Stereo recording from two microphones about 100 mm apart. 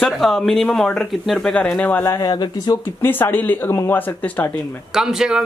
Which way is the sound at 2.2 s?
40° left (ahead or behind).